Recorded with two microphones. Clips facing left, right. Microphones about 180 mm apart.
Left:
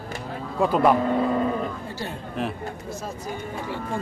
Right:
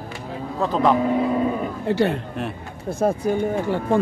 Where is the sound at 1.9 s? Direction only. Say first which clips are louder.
Right 12 dB; 65° right (ahead or behind).